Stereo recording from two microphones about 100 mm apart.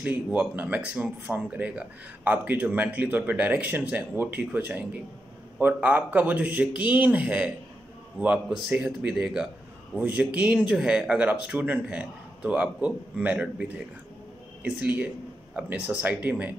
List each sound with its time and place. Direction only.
0.3 s speech: 15° right (ahead or behind)